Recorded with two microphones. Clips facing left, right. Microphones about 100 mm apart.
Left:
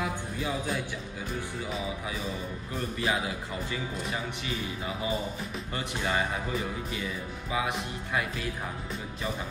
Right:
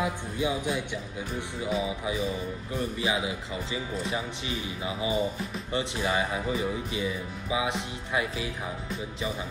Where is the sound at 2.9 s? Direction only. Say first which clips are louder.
Left 2 dB; 15° right (ahead or behind).